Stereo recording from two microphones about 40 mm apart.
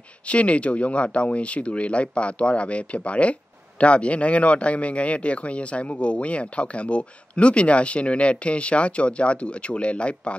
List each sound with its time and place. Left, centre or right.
0.3 s speech: left